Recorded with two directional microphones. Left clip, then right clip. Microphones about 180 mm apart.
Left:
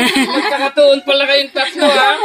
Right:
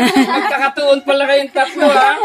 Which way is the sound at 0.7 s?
65° right (ahead or behind).